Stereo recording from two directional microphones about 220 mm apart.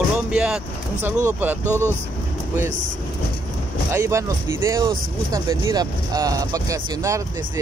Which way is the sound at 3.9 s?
10° right (ahead or behind).